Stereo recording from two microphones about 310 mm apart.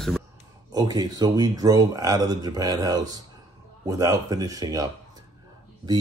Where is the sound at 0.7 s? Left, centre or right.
Centre.